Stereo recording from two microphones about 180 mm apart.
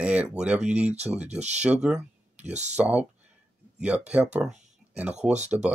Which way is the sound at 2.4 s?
40° right (ahead or behind).